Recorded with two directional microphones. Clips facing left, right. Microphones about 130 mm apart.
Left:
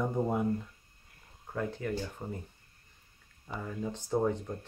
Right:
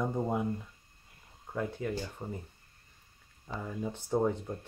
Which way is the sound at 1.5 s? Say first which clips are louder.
Even; 5° right (ahead or behind).